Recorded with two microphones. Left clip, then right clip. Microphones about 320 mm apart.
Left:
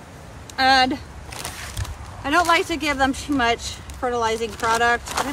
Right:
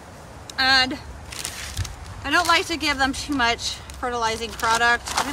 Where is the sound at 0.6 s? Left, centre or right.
Centre.